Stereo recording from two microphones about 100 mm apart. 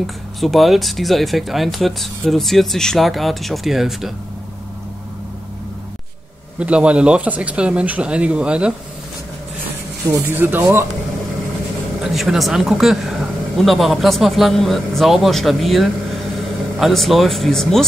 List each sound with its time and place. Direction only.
0.0 s speech: centre (ahead or behind)
6.6 s speech: 10° right (ahead or behind)
10.1 s speech: 25° right (ahead or behind)
12.0 s speech: centre (ahead or behind)